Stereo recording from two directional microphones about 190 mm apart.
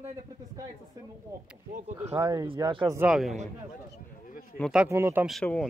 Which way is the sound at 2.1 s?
20° right (ahead or behind).